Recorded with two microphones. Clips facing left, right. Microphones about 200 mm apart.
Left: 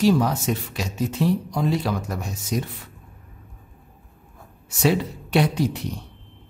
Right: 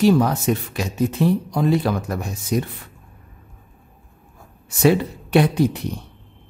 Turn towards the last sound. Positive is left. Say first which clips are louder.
# right 4 dB
turn(degrees=-55)  # may be behind; listen again after turning